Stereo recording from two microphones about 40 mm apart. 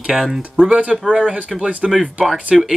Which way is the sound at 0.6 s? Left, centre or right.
Centre.